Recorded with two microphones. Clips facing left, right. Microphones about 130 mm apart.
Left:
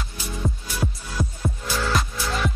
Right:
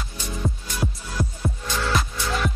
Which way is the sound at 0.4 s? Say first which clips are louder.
Even; centre (ahead or behind).